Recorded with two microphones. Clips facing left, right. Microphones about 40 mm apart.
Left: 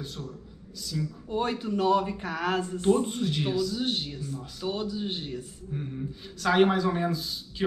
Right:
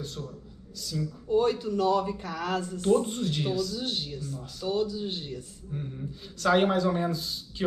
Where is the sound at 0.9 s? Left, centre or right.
Left.